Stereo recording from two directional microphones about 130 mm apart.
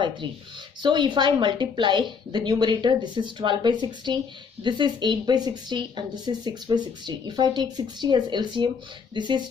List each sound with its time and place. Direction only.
0.8 s a woman's voice: 35° right (ahead or behind)